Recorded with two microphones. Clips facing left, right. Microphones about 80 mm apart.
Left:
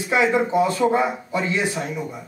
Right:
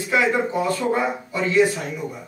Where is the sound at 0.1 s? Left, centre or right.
Left.